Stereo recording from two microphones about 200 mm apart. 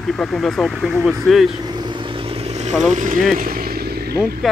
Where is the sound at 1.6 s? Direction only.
20° right (ahead or behind).